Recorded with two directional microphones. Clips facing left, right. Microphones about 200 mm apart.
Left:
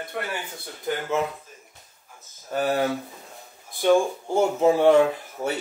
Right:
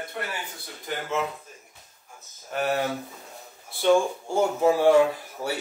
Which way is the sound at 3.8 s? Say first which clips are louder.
Left 1 dB; 20° left (ahead or behind).